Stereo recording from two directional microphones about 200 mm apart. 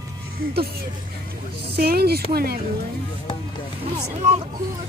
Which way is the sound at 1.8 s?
50° right (ahead or behind).